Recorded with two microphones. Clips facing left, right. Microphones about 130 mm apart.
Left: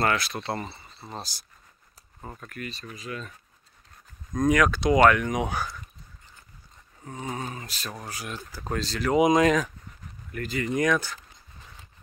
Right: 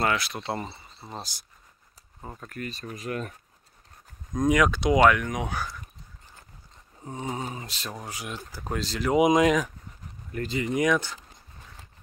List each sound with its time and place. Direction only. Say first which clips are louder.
0.0 s speech: left 1 dB; 10° right (ahead or behind)
2.3 s speech: right 2 dB; 30° right (ahead or behind); by 3.3 s 55° right (ahead or behind)
4.4 s speech: even; 15° right (ahead or behind)
5.0 s speech: left 2 dB; centre (ahead or behind)
7.0 s speech: right 1 dB; 20° right (ahead or behind)
10.3 s speech: right 1 dB; 25° right (ahead or behind)
10.7 s speech: even; 15° right (ahead or behind)